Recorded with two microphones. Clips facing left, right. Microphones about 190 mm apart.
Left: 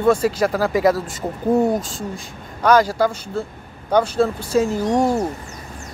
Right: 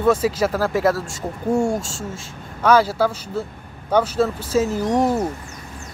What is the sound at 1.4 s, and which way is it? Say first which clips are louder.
Speech: left 3 dB; 20° left (ahead or behind).